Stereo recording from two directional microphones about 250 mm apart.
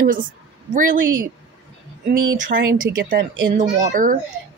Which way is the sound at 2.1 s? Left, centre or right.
Right.